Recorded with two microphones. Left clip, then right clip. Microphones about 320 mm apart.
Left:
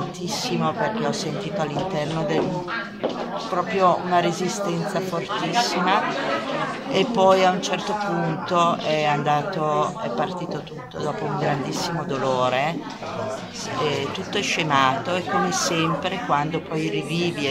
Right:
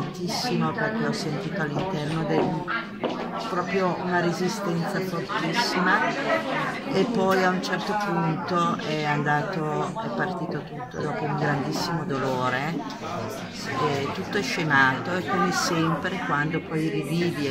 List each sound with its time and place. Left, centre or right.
4.1 s a man's voice: centre
5.5 s a man's voice: centre
12.4 s a man's voice: centre
14.3 s a man's voice: centre